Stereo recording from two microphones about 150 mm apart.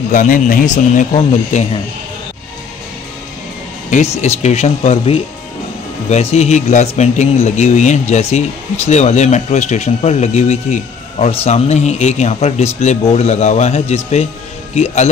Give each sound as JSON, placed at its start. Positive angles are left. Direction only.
{"t": 0.1, "sound": "speech", "side_deg": 60}
{"t": 3.9, "sound": "speech", "side_deg": 50}